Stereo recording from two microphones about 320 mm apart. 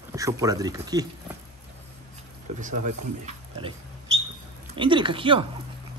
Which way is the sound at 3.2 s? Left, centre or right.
Centre.